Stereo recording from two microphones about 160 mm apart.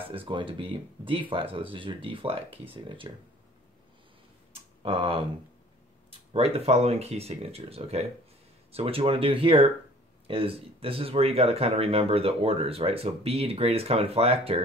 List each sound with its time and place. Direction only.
0.1 s speech: 30° right (ahead or behind)
4.8 s speech: 35° right (ahead or behind)
6.3 s speech: 40° right (ahead or behind)